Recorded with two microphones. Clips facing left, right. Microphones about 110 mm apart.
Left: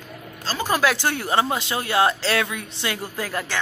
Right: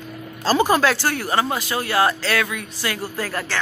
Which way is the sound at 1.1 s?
25° left (ahead or behind).